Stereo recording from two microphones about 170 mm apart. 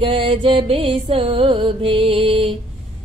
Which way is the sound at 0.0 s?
30° right (ahead or behind).